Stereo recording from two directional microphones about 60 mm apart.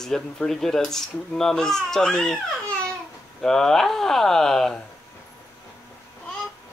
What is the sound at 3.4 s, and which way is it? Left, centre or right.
Speech, centre.